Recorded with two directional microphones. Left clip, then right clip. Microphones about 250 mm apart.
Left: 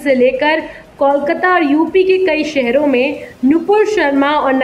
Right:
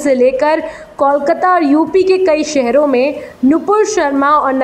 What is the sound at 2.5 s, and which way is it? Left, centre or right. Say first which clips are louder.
A woman's voice: right 2 dB; centre.